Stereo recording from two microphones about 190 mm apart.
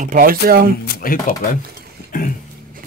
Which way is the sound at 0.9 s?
50° left (ahead or behind).